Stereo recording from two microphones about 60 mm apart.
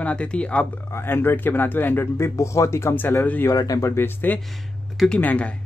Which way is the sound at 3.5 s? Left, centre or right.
Left.